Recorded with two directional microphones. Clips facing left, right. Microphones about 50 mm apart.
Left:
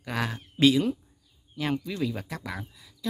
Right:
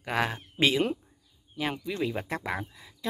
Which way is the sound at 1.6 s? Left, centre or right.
Centre.